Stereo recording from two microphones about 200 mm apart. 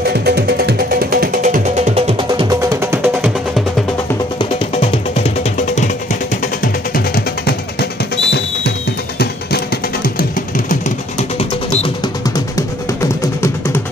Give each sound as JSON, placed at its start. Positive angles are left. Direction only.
{"t": 0.0, "sound": "music", "side_deg": -50}
{"t": 4.4, "sound": "music", "side_deg": 30}
{"t": 10.7, "sound": "music", "side_deg": 30}
{"t": 12.5, "sound": "music", "side_deg": 15}